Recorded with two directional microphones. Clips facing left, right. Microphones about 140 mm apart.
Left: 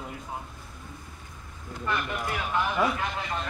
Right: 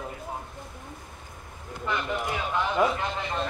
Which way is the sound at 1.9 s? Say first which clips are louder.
Right 1 dB; 20° right (ahead or behind).